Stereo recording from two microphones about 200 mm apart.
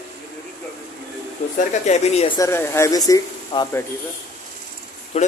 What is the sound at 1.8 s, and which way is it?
Speech, 35° left (ahead or behind).